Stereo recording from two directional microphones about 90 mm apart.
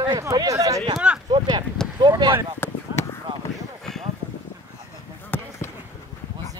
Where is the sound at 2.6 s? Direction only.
30° left (ahead or behind).